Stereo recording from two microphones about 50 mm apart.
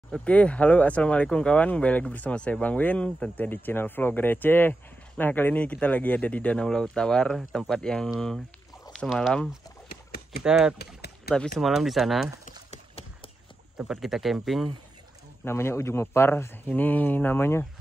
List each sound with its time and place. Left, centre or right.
0.2 s speech: left
2.3 s speech: centre
2.6 s speech: left
3.3 s speech: left
6.6 s speech: centre
9.0 s speech: centre
10.4 s speech: centre
11.3 s speech: centre
11.6 s speech: centre
13.9 s speech: centre
15.4 s a man's voice: left
16.6 s speech: left
17.4 s a man's voice: left